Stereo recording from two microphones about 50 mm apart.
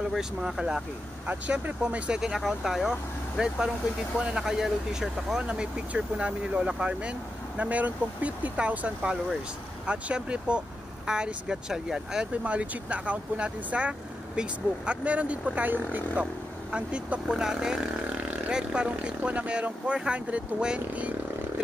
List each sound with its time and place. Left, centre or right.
0.2 s speech: centre
1.5 s speech: right
2.1 s speech: centre
4.2 s speech: right
4.5 s speech: centre
5.4 s speech: right
12.4 s speech: right
15.5 s speech: right
16.7 s speech: right
17.4 s speech: centre